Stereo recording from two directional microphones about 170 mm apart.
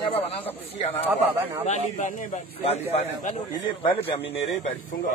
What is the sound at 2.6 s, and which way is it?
Speech, 40° left (ahead or behind).